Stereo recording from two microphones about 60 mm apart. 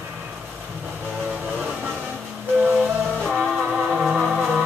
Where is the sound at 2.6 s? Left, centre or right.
Right.